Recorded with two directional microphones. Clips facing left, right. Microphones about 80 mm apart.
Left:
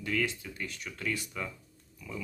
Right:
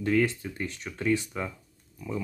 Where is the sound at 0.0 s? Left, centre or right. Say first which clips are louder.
Right 7 dB; right.